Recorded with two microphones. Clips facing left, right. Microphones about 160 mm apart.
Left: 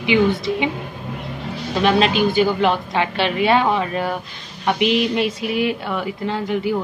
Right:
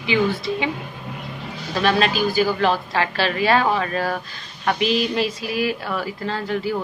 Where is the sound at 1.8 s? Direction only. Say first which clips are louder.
Left 3 dB; 20° left (ahead or behind).